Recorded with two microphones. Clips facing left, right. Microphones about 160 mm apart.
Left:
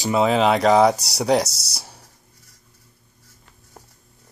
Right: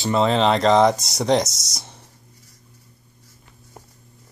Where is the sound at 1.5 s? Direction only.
30° left (ahead or behind).